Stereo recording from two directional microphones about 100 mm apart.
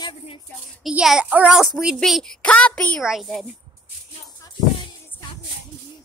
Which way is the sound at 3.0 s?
5° right (ahead or behind).